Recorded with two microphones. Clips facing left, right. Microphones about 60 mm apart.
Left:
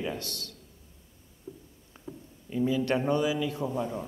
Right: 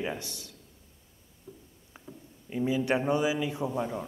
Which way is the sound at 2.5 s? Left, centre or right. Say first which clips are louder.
Left 1 dB; centre.